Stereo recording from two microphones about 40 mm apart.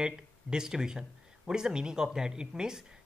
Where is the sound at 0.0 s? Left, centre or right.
Centre.